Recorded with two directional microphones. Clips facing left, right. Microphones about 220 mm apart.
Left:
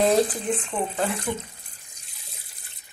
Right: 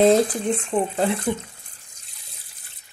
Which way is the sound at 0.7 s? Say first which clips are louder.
Right 5 dB; 35° right (ahead or behind).